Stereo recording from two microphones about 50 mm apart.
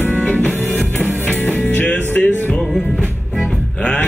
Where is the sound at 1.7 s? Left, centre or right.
Left.